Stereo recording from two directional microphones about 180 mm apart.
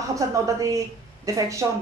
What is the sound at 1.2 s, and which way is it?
Speech, 20° right (ahead or behind).